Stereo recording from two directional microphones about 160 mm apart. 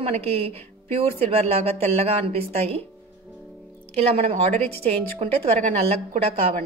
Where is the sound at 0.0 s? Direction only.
40° right (ahead or behind).